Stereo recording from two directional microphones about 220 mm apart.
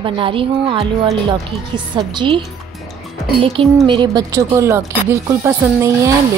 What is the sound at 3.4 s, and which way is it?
Speech, 25° right (ahead or behind).